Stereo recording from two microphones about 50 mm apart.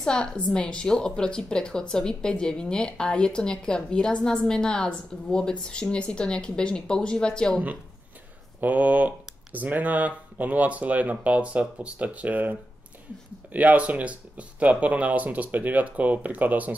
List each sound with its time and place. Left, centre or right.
0.0 s speech: centre
8.5 s speech: right